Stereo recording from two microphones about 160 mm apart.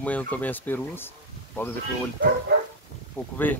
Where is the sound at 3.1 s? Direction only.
10° left (ahead or behind).